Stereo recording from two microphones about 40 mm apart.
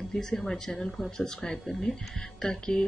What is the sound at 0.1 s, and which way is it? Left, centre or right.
Speech, centre.